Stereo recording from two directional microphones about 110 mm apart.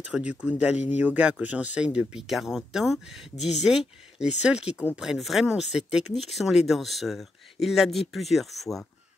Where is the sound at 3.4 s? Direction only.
90° left.